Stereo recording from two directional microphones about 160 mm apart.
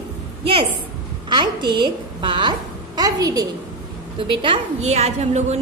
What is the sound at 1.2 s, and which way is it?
A woman's voice, 25° right (ahead or behind).